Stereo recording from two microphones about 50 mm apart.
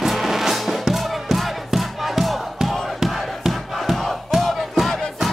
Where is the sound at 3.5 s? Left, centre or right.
Centre.